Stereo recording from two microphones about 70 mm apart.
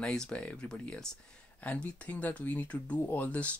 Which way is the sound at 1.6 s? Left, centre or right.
Left.